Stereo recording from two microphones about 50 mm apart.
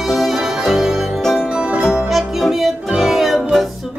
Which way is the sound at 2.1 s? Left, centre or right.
Centre.